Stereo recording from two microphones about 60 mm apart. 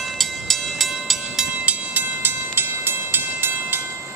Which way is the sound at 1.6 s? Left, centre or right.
Right.